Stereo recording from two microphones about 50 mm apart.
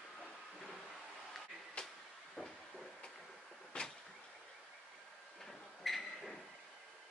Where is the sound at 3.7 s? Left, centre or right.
Left.